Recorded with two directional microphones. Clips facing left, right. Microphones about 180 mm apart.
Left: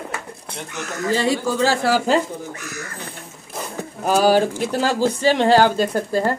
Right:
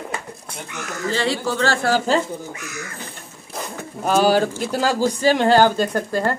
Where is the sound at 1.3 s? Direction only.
10° left (ahead or behind).